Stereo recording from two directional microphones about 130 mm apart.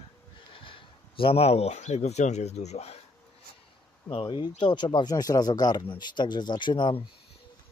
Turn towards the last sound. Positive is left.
turn(degrees=35)  # may be behind; listen again after turning